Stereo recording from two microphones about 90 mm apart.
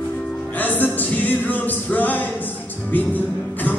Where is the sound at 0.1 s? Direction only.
15° left (ahead or behind).